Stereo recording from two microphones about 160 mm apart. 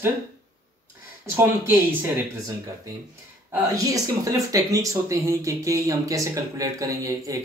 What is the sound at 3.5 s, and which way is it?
Speech, 20° right (ahead or behind).